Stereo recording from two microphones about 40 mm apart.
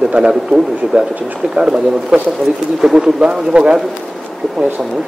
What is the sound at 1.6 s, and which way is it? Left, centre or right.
Speech, centre.